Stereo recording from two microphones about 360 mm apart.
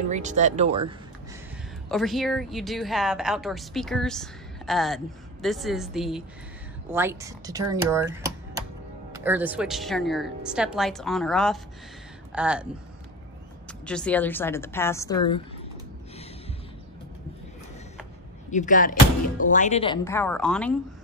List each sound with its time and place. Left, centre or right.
0.1 s speech: centre
1.9 s speech: centre
13.8 s a woman's voice: centre
18.5 s a woman's voice: left; by 20.7 s centre